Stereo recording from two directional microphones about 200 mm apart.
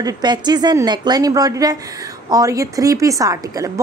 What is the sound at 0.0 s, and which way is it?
A woman's voice, 20° right (ahead or behind).